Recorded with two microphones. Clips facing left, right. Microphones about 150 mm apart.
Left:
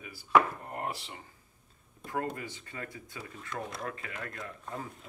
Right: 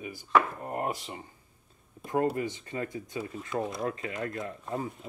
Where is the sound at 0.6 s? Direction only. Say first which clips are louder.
Right 5 dB; 25° right (ahead or behind).